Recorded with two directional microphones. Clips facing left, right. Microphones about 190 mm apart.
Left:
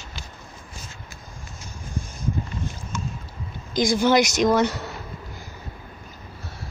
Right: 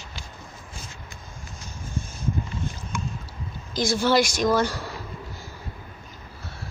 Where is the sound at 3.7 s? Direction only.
15° left (ahead or behind).